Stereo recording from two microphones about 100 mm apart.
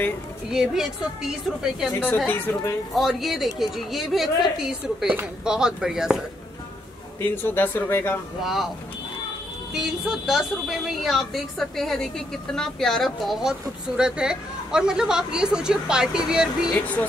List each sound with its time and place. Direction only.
0.5 s a woman's voice: 5° right (ahead or behind)
2.2 s a man's voice: 20° left (ahead or behind)
3.0 s a woman's voice: centre (ahead or behind)
7.2 s a man's voice: 20° left (ahead or behind)
8.4 s a woman's voice: centre (ahead or behind)
9.8 s a woman's voice: 5° right (ahead or behind)
16.7 s speech: 15° left (ahead or behind)